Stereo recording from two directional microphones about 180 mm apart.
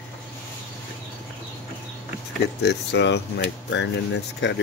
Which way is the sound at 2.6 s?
70° left (ahead or behind).